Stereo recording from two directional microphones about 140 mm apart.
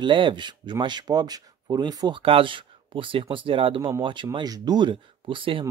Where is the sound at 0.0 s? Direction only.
35° right (ahead or behind).